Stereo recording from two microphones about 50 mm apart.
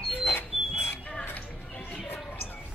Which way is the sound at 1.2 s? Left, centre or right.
Left.